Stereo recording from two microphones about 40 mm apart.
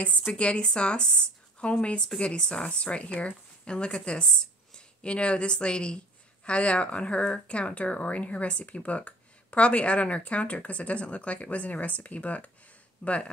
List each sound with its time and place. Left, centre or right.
0.3 s speech: left